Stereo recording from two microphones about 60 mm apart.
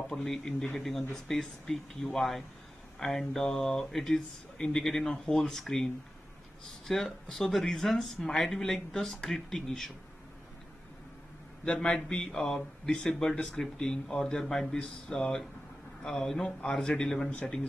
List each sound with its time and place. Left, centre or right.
0.1 s a man's voice: centre
6.9 s speech: centre
11.6 s a man's voice: centre